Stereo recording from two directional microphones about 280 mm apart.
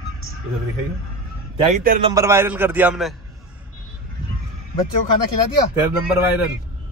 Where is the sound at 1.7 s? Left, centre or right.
Right.